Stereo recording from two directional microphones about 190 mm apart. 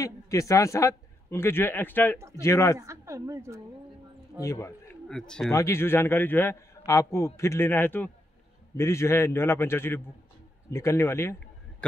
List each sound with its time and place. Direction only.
0.0 s a man's voice: 15° left (ahead or behind)
2.8 s a woman's voice: 15° right (ahead or behind)
4.4 s a man's voice: 15° left (ahead or behind)
5.0 s speech: 5° left (ahead or behind)
5.5 s a man's voice: 15° left (ahead or behind)